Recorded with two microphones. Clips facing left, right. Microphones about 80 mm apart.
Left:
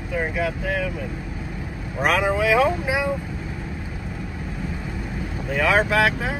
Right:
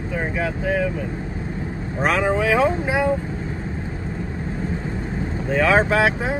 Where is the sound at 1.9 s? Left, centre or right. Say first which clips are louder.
Even; centre.